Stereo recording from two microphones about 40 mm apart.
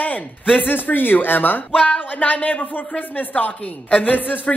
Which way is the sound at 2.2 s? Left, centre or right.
Left.